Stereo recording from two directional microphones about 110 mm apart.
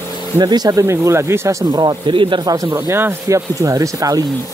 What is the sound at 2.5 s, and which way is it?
Speech, 30° right (ahead or behind).